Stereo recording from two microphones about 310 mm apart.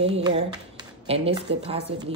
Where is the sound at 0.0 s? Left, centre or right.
Centre.